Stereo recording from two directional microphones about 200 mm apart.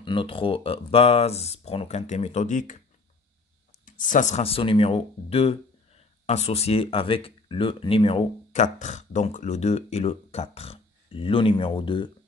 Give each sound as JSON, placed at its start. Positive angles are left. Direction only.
{"t": 0.0, "sound": "speech", "side_deg": 25}
{"t": 3.8, "sound": "speech", "side_deg": 40}